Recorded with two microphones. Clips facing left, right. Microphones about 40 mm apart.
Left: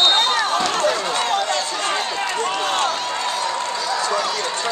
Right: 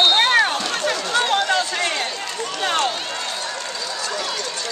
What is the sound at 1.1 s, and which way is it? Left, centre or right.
Run, right.